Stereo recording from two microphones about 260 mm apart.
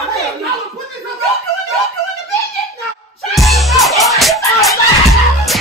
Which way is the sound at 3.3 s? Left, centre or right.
Centre.